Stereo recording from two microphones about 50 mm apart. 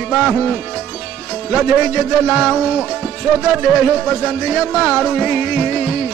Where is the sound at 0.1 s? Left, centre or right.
Centre.